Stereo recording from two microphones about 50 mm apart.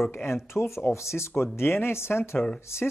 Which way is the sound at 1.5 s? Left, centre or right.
Left.